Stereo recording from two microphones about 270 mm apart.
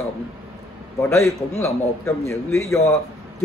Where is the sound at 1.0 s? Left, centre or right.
Centre.